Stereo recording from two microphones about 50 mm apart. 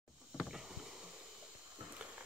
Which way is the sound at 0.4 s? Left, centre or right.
Centre.